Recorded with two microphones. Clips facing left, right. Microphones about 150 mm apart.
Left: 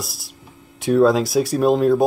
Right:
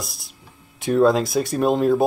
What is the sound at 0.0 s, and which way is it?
Speech, centre (ahead or behind).